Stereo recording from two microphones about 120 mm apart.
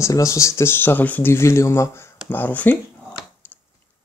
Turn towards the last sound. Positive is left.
turn(degrees=15)  # may be behind; listen again after turning